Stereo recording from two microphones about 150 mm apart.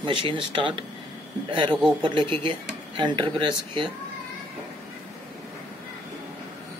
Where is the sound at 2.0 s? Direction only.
35° right (ahead or behind).